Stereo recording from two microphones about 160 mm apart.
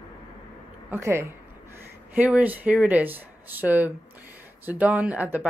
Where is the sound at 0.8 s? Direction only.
15° right (ahead or behind).